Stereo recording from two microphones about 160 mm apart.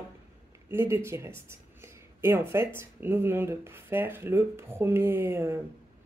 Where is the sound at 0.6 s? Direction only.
15° right (ahead or behind).